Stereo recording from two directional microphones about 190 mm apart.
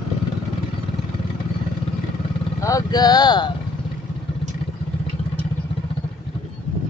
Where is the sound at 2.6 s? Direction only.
20° left (ahead or behind).